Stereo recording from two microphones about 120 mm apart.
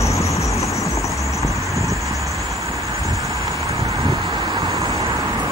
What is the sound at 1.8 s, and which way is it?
Vehicle, 25° right (ahead or behind).